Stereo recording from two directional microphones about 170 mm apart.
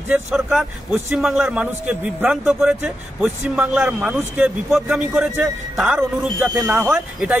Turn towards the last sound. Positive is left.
turn(degrees=-10)  # may be behind; listen again after turning